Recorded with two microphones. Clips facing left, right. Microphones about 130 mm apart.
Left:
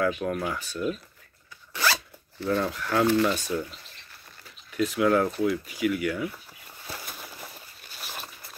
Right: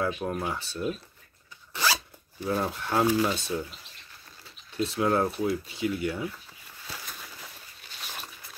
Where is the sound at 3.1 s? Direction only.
10° right (ahead or behind).